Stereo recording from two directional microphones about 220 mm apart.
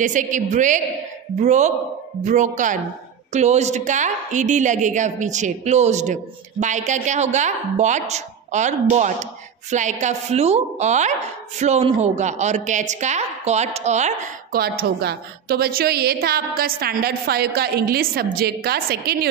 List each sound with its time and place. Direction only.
0.0 s a woman's voice: 35° right (ahead or behind)